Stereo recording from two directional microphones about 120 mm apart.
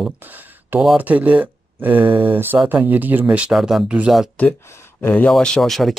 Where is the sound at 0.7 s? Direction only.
10° right (ahead or behind).